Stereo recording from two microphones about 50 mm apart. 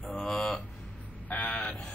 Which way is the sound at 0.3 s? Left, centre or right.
Centre.